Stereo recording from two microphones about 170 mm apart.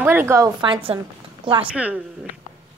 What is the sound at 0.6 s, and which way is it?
A woman's voice, 30° right (ahead or behind).